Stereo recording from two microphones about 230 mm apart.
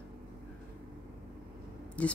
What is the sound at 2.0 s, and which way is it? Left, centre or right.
Speech, centre.